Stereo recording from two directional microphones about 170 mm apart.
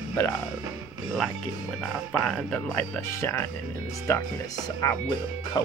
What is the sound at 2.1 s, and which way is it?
Speech, 5° left (ahead or behind).